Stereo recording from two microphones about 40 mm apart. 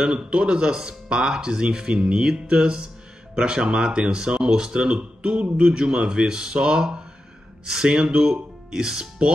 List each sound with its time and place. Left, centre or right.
0.3 s speech: right